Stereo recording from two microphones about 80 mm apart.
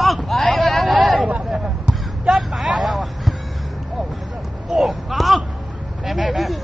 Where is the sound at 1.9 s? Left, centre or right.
Centre.